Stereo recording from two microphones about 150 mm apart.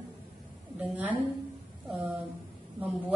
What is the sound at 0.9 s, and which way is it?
Speech, 10° right (ahead or behind).